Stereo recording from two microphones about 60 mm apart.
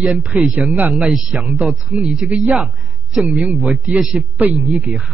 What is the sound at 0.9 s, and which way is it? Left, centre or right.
A man's voice, centre.